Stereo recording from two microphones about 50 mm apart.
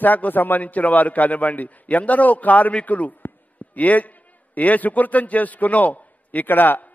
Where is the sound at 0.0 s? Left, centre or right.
Left.